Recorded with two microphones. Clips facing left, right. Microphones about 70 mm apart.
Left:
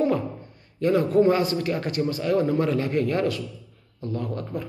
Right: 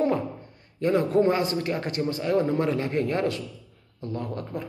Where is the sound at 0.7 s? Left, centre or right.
Right.